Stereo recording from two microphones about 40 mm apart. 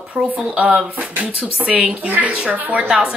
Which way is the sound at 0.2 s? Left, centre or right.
Right.